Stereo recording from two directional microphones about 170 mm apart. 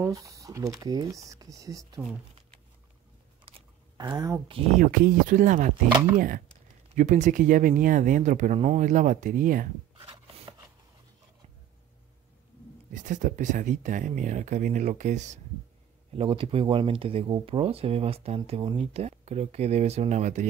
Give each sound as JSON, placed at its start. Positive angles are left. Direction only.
{"t": 0.0, "sound": "speech", "side_deg": -20}
{"t": 4.0, "sound": "speech", "side_deg": -25}
{"t": 4.7, "sound": "speech", "side_deg": -55}
{"t": 5.9, "sound": "speech", "side_deg": -20}
{"t": 6.1, "sound": "speech", "side_deg": -55}
{"t": 9.9, "sound": "rub", "side_deg": -30}
{"t": 12.9, "sound": "speech", "side_deg": -45}
{"t": 16.1, "sound": "speech", "side_deg": -35}